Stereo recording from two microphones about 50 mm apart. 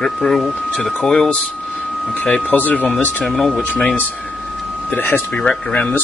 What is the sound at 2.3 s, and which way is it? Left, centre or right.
Speech, left.